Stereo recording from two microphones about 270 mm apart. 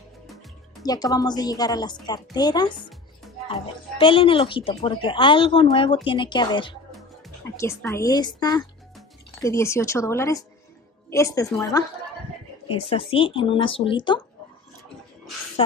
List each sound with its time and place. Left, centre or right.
0.8 s a woman's voice: centre
12.9 s a woman's voice: centre